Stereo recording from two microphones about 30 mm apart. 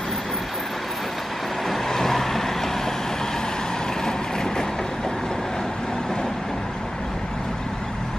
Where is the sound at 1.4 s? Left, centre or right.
Centre; by 6.5 s left.